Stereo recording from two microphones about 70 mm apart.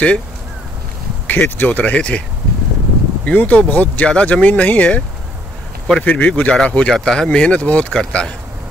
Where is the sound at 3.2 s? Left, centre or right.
Left.